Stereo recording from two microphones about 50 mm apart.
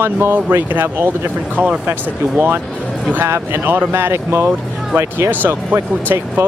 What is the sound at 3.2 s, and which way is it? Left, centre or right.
Speech, right.